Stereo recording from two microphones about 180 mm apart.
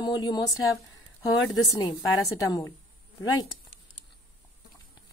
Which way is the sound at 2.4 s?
20° left (ahead or behind).